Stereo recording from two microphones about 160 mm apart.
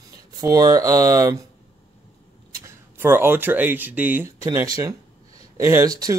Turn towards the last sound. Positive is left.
turn(degrees=-20)  # may be behind; listen again after turning